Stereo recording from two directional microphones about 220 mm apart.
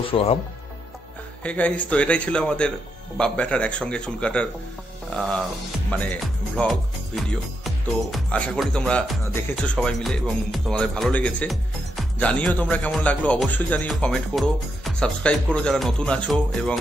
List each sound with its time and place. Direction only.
0.1 s speech: 25° left (ahead or behind)
1.4 s speech: 5° left (ahead or behind)
5.9 s speech: 5° left (ahead or behind)